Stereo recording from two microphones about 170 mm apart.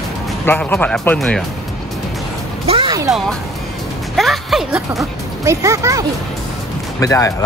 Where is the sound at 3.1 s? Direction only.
Centre (ahead or behind).